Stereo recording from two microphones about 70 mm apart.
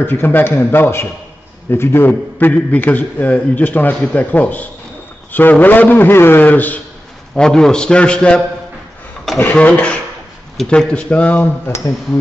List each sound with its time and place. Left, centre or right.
0.0 s a man's voice: left
2.3 s a man's voice: left
7.3 s speech: centre
9.4 s a man's voice: left